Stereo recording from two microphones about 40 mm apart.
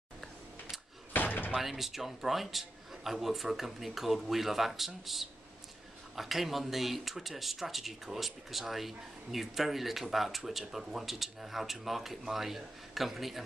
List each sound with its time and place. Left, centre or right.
1.1 s slam: left
1.5 s speech: centre